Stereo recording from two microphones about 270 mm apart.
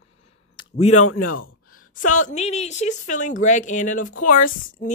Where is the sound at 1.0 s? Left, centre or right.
Left.